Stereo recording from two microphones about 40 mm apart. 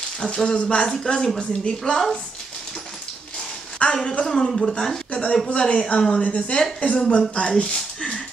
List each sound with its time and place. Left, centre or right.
0.2 s speech: centre
0.5 s speech: left
1.8 s speech: centre
3.8 s speech: centre
5.1 s a woman's voice: left